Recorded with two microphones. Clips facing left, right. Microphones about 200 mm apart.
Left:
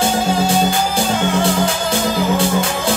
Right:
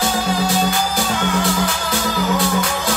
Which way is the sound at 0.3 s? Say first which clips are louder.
Left 3 dB; 25° left (ahead or behind).